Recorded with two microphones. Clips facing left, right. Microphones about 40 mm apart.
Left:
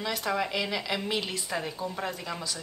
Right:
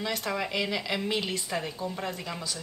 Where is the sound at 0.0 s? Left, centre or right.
Centre.